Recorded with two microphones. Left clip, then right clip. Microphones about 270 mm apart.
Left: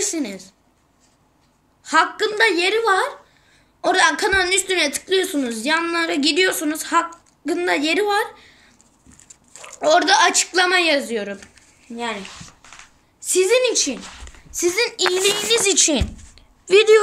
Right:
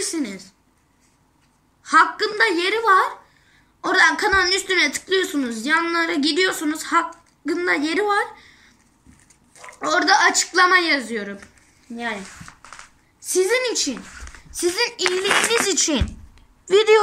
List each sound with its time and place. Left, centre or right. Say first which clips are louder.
0.0 s speech: left 2 dB; centre
1.8 s speech: right 1 dB; centre
13.2 s speech: left 3 dB; centre
14.0 s a sound: left 2 dB; centre
14.6 s a woman's voice: left 2 dB; centre